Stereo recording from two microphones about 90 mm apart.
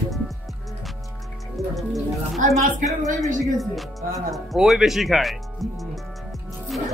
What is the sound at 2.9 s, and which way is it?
Speech, 35° right (ahead or behind).